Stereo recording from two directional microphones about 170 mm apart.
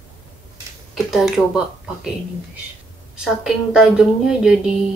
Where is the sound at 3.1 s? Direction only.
5° right (ahead or behind).